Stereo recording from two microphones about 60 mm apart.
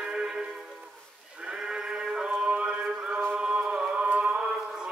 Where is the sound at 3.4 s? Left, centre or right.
Centre.